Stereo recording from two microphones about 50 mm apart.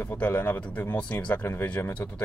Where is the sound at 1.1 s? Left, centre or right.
Left.